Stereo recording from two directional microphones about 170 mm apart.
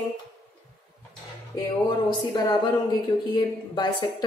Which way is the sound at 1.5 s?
25° left (ahead or behind).